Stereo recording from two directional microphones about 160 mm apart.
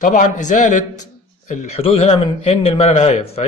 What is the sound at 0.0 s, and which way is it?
Speech, 55° left (ahead or behind).